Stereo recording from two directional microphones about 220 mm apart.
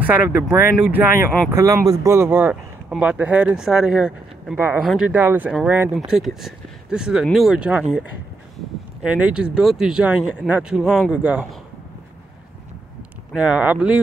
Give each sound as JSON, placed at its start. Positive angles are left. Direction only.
{"t": 0.0, "sound": "speech", "side_deg": -5}
{"t": 9.0, "sound": "speech", "side_deg": -5}
{"t": 13.3, "sound": "speech", "side_deg": -5}